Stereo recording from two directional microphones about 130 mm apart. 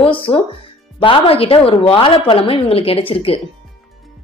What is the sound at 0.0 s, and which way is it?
A woman's voice, 40° left (ahead or behind).